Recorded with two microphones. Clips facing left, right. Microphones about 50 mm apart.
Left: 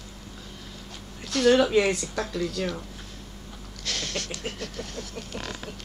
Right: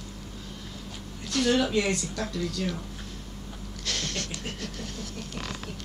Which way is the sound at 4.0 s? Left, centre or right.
Centre.